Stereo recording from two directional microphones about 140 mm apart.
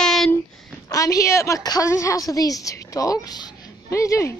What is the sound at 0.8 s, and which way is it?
A woman's voice, 25° left (ahead or behind).